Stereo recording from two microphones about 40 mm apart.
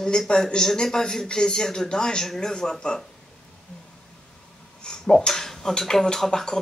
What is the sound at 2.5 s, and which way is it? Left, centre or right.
Speech, centre.